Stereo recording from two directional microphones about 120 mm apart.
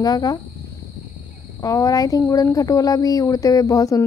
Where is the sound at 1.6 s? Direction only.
30° left (ahead or behind).